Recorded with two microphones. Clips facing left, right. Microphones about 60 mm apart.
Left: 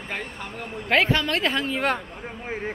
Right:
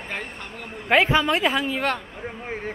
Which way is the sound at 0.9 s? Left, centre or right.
Centre.